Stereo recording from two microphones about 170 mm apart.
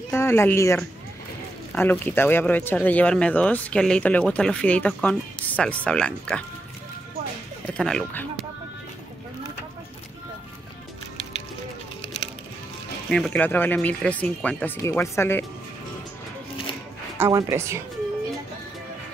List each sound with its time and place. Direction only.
0.1 s speech: 15° left (ahead or behind)
1.8 s speech: 10° left (ahead or behind)
7.6 s speech: 5° left (ahead or behind)
13.1 s speech: 5° left (ahead or behind)
17.2 s speech: 15° right (ahead or behind)